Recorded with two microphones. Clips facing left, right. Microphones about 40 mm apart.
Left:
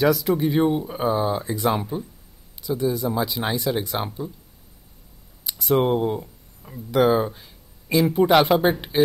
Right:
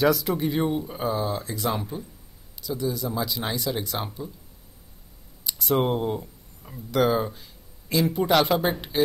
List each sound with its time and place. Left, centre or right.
0.0 s speech: centre
5.6 s speech: centre